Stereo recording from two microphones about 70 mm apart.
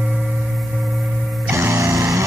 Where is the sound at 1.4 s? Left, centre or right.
Right.